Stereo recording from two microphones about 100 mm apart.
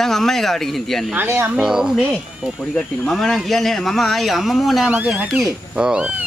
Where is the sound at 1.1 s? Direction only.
20° right (ahead or behind).